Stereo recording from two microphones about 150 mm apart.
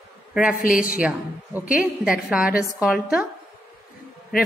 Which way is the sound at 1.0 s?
10° right (ahead or behind).